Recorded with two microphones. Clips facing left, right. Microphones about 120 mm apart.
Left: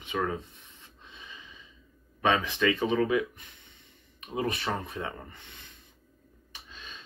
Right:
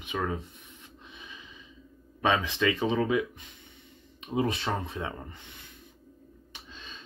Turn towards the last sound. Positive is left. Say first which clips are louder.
# right 2 dB
turn(degrees=-15)  # may be behind; listen again after turning